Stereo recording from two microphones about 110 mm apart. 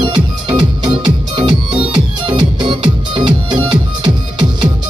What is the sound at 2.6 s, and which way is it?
Music, 45° right (ahead or behind).